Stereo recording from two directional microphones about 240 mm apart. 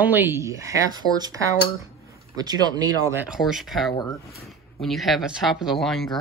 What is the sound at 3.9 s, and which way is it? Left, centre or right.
Speech, centre.